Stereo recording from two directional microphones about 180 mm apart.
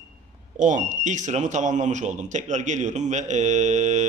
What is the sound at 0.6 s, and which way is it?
Speech, 45° right (ahead or behind).